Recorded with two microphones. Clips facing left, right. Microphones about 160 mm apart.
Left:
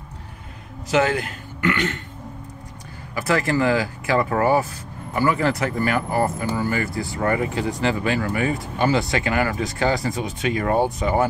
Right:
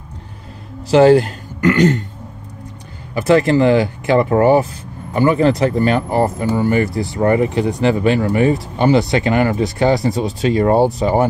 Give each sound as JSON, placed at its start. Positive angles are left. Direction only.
{"t": 0.8, "sound": "speech", "side_deg": -35}
{"t": 3.2, "sound": "speech", "side_deg": -25}